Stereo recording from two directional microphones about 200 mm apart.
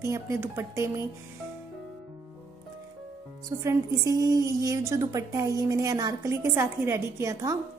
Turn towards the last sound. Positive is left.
turn(degrees=-15)  # may be behind; listen again after turning